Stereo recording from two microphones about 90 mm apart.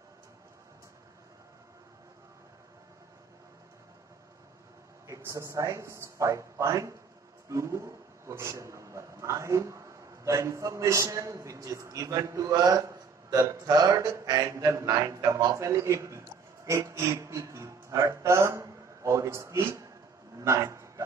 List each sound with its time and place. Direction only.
5.0 s a man's voice: 35° right (ahead or behind)